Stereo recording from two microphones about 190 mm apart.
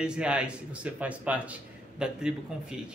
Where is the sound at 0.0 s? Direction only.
5° right (ahead or behind).